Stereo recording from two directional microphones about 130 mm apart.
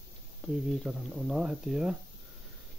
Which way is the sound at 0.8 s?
5° right (ahead or behind).